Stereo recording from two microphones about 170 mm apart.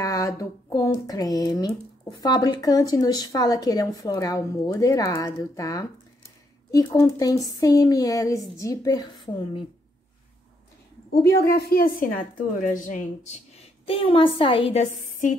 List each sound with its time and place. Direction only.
0.0 s a sound: 20° left (ahead or behind)
1.6 s speech: 20° left (ahead or behind)
11.3 s a woman's voice: 65° left (ahead or behind); by 15.3 s 45° left (ahead or behind)